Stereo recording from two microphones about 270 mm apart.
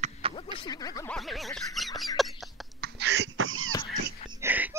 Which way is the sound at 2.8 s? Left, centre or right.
Right.